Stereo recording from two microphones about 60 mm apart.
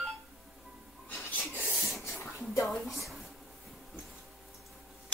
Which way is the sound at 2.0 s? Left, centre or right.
Left.